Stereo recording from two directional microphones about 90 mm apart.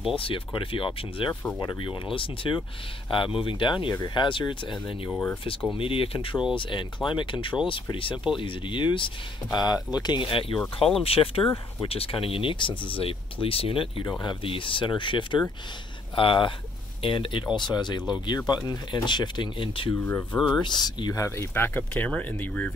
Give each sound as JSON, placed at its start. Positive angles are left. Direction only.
{"t": 0.1, "sound": "speech", "side_deg": 85}
{"t": 1.6, "sound": "speech", "side_deg": 60}
{"t": 3.9, "sound": "speech", "side_deg": 55}
{"t": 5.1, "sound": "speech", "side_deg": 25}
{"t": 5.8, "sound": "speech", "side_deg": 85}
{"t": 9.5, "sound": "speech", "side_deg": 50}
{"t": 11.1, "sound": "speech", "side_deg": 90}
{"t": 20.0, "sound": "speech", "side_deg": 30}
{"t": 20.3, "sound": "speech", "side_deg": 0}
{"t": 20.6, "sound": "speech", "side_deg": 55}
{"t": 21.1, "sound": "speech", "side_deg": 35}
{"t": 21.5, "sound": "speech", "side_deg": 25}